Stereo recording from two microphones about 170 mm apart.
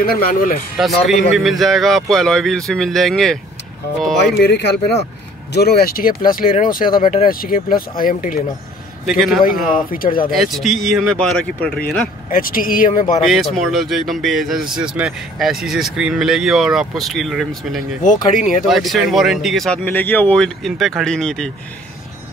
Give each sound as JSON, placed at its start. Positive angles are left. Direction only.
{"t": 0.0, "sound": "speech", "side_deg": 60}
{"t": 0.7, "sound": "speech", "side_deg": 0}
{"t": 4.4, "sound": "speech", "side_deg": 85}
{"t": 5.5, "sound": "speech", "side_deg": 70}
{"t": 9.0, "sound": "speech", "side_deg": 0}
{"t": 9.8, "sound": "speech", "side_deg": 55}
{"t": 10.3, "sound": "speech", "side_deg": 0}
{"t": 12.3, "sound": "speech", "side_deg": 55}
{"t": 13.2, "sound": "speech", "side_deg": 0}